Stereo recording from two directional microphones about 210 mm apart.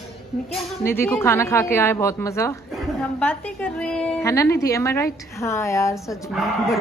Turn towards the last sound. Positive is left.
turn(degrees=0)  # may be behind; listen again after turning